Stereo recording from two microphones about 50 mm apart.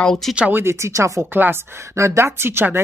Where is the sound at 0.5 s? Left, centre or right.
Right.